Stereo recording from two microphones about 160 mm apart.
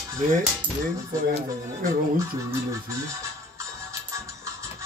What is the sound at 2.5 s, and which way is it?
Music, 20° right (ahead or behind).